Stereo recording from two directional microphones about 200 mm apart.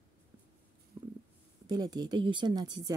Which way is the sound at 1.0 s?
20° right (ahead or behind).